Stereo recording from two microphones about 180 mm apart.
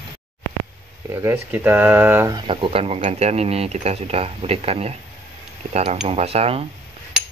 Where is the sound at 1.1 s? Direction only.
10° right (ahead or behind).